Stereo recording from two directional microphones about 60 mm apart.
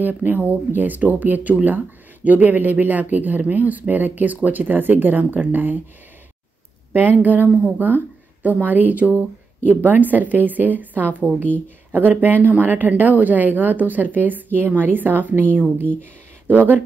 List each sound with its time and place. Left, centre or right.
0.0 s speech: right
6.9 s a woman's voice: right